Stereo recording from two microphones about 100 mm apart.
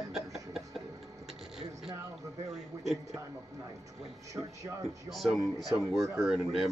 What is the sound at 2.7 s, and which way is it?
Speech, 25° right (ahead or behind).